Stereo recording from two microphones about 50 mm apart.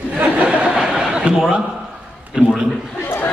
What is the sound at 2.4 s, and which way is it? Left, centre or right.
Speech, centre.